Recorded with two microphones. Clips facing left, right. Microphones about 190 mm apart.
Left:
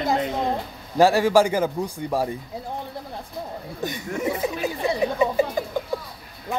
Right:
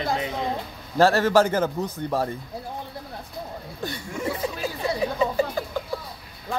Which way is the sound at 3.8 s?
20° left (ahead or behind).